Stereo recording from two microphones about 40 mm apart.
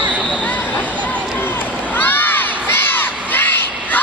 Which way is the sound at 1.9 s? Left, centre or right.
Left.